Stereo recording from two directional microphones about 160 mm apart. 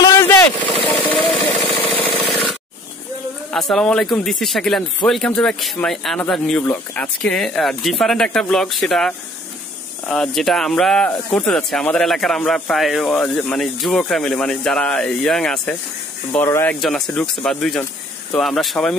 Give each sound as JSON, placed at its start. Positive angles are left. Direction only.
{"t": 0.0, "sound": "vehicle", "side_deg": 15}
{"t": 0.9, "sound": "a sound", "side_deg": 10}
{"t": 3.5, "sound": "speech", "side_deg": 5}
{"t": 16.3, "sound": "speech", "side_deg": 15}